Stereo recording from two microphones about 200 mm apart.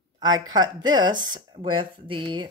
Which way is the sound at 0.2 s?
20° right (ahead or behind).